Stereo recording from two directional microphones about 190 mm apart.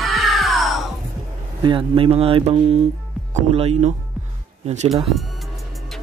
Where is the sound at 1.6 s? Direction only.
25° right (ahead or behind).